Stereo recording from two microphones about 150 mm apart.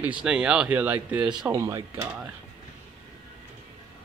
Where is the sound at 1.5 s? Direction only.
20° right (ahead or behind).